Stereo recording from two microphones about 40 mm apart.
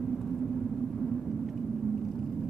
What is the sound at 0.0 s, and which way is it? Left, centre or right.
Vehicle, centre.